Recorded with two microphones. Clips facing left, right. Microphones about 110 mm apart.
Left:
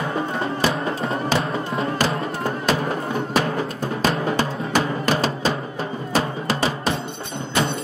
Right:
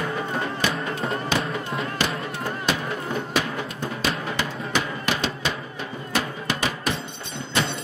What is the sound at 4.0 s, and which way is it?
Music, 40° left (ahead or behind).